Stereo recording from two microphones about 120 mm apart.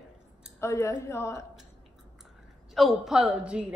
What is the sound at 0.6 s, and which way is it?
Speech, 25° left (ahead or behind).